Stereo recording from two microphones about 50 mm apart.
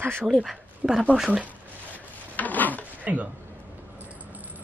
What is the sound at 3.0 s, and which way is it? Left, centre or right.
Speech, right.